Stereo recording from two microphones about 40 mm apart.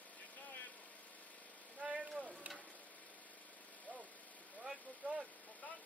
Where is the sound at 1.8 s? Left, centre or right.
Right.